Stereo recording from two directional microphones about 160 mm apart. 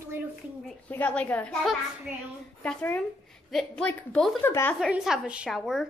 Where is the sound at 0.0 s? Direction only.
15° right (ahead or behind).